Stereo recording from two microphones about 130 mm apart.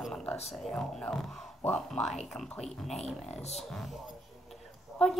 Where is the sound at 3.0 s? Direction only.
55° left (ahead or behind).